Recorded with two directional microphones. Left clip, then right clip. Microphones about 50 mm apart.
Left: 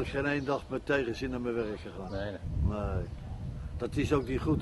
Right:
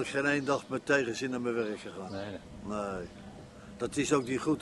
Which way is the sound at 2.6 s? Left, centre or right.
Right.